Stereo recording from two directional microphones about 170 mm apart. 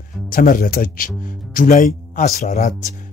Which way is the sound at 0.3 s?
55° left (ahead or behind).